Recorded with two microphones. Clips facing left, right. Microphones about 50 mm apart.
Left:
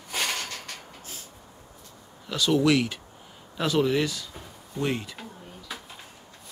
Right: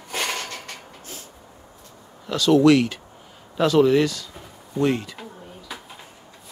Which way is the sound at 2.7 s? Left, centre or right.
Centre.